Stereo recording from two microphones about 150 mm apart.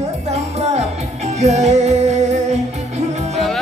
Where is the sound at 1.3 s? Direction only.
50° right (ahead or behind).